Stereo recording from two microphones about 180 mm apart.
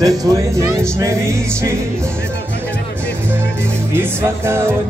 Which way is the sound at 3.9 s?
15° right (ahead or behind).